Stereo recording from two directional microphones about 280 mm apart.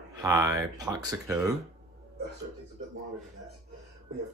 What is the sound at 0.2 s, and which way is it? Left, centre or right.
Speech, centre.